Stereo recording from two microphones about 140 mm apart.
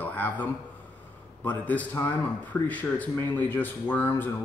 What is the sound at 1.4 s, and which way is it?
Speech, 10° left (ahead or behind).